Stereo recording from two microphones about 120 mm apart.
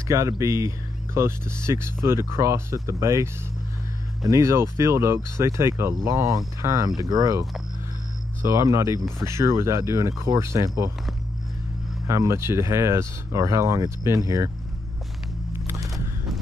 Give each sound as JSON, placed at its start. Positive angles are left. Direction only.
{"t": 0.1, "sound": "speech", "side_deg": -25}
{"t": 4.3, "sound": "speech", "side_deg": -25}
{"t": 12.1, "sound": "speech", "side_deg": -25}